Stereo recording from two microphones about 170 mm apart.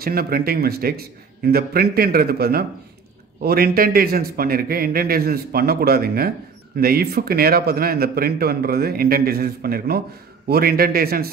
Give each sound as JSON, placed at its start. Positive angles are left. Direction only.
{"t": 0.0, "sound": "speech", "side_deg": -60}